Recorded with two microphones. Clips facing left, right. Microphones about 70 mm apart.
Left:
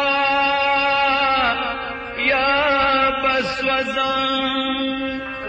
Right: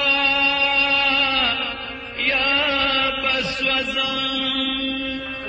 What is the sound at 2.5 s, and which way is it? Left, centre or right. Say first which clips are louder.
Chant: left 5 dB; left.